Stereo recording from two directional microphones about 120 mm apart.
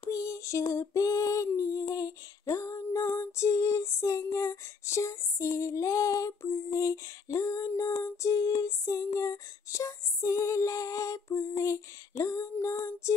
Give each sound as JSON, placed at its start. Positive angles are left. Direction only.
{"t": 0.1, "sound": "female singing", "side_deg": 25}